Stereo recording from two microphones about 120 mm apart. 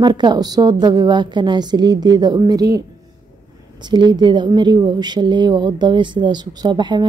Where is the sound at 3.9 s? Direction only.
40° right (ahead or behind).